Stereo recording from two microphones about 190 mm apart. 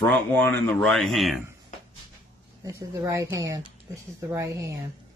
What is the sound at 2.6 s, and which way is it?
Speech, 15° right (ahead or behind).